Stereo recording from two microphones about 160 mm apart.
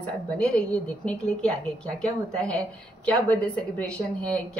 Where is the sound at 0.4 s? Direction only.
5° left (ahead or behind).